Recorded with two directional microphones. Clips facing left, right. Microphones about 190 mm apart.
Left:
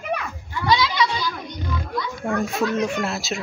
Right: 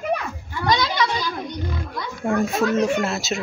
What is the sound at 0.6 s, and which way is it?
Speech, 45° right (ahead or behind).